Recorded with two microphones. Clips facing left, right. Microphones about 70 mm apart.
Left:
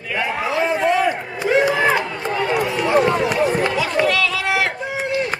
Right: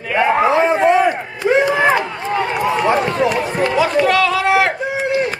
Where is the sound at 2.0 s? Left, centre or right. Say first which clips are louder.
Right 2 dB; right.